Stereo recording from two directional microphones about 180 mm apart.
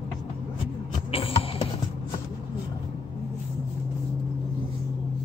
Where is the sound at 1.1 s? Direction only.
30° left (ahead or behind).